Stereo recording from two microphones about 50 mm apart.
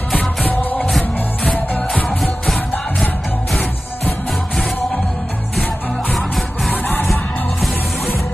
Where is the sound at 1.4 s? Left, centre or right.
Left.